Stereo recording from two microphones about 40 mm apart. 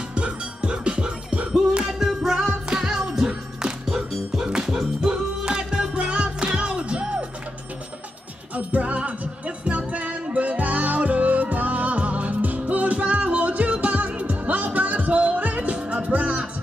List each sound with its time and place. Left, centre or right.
0.1 s music: right
1.9 s music: centre; by 7.2 s right
8.5 s music: right